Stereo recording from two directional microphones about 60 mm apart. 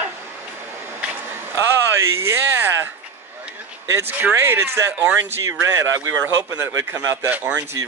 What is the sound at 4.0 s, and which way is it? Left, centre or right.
Speech, right.